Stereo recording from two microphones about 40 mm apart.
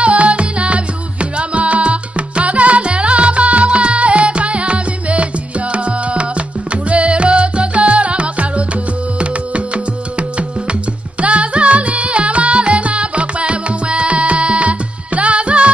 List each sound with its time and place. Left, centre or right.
0.0 s music: right
11.1 s music: right